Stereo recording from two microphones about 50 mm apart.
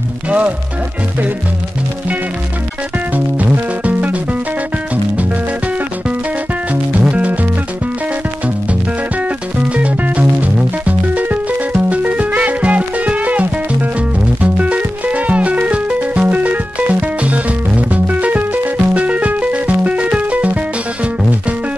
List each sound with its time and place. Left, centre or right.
3.8 s music: right
6.7 s music: right
9.8 s music: right